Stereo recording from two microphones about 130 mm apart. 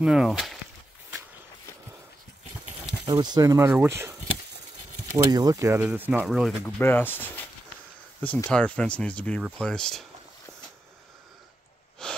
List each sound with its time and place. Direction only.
0.0 s speech: 5° right (ahead or behind)
3.1 s speech: 30° right (ahead or behind)
5.1 s speech: 30° right (ahead or behind); by 6.5 s 5° right (ahead or behind)
6.6 s speech: 15° left (ahead or behind)
8.5 s speech: 10° left (ahead or behind)
12.0 s wheeze: 5° left (ahead or behind)